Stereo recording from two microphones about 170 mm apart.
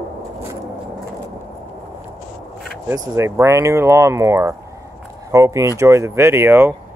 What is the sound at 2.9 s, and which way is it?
Speech, 15° right (ahead or behind).